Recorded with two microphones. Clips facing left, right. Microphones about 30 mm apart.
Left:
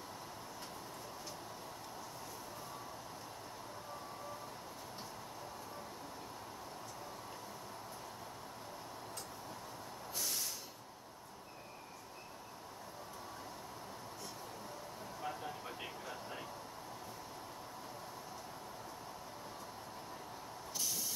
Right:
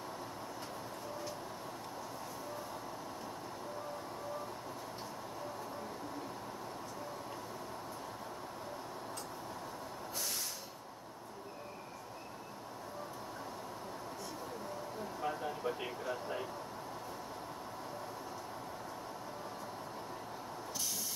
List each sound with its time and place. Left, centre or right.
15.2 s speech: centre